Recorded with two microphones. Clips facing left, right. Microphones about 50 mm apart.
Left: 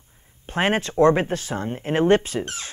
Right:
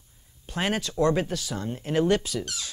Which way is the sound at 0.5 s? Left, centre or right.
Left.